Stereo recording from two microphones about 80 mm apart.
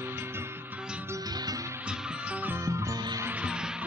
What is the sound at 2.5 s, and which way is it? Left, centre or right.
Music, right.